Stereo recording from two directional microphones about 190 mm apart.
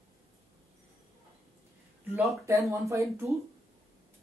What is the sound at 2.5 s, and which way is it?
Speech, 15° right (ahead or behind).